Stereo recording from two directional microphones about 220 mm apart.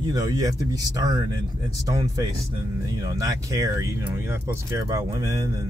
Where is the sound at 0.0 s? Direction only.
15° right (ahead or behind).